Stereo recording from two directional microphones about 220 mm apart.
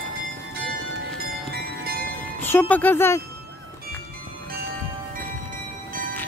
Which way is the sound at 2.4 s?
10° left (ahead or behind).